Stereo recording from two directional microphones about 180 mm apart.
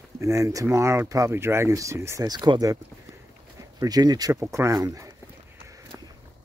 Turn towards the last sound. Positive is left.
turn(degrees=-20)  # may be behind; listen again after turning